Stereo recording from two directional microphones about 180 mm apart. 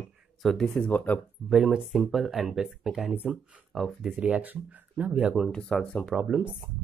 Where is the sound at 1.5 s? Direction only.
Centre (ahead or behind).